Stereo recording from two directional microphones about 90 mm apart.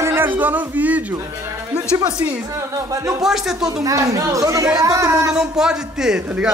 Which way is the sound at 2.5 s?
35° right (ahead or behind).